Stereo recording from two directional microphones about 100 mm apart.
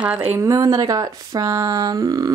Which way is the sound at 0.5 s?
35° right (ahead or behind).